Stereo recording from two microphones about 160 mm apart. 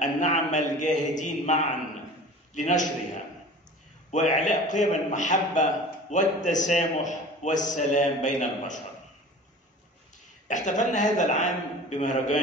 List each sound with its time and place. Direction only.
0.0 s a man's voice: 50° left (ahead or behind)
4.1 s a man's voice: 50° left (ahead or behind)
10.5 s a man's voice: 50° left (ahead or behind)